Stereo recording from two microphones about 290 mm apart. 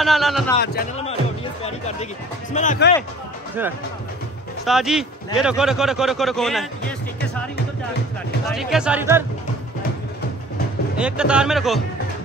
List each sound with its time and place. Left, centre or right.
0.0 s speech: centre
1.0 s speech: left
4.6 s speech: centre
8.5 s speech: centre
11.0 s speech: centre